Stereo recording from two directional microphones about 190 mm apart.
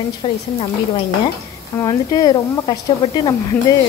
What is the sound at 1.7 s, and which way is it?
A woman's voice, 20° left (ahead or behind).